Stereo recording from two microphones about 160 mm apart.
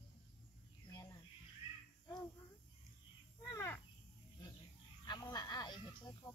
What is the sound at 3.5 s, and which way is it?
Insect, 15° left (ahead or behind).